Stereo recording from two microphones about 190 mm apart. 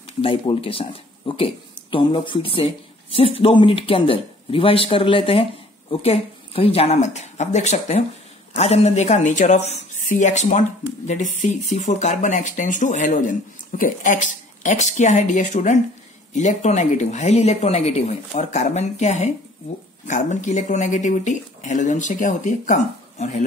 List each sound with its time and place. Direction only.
0.2 s speech: 30° left (ahead or behind)